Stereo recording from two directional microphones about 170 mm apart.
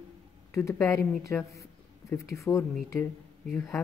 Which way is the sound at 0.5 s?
15° left (ahead or behind).